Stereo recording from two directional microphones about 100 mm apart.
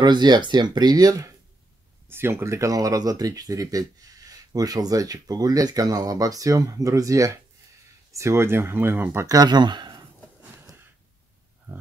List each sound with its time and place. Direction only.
0.0 s speech: 45° right (ahead or behind)
2.0 s speech: 25° right (ahead or behind); by 10.0 s 45° right (ahead or behind)